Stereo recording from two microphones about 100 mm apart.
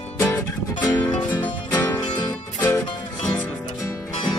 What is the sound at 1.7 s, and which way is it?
Music, 35° left (ahead or behind).